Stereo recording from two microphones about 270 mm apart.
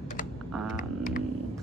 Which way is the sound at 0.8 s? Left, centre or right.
Left.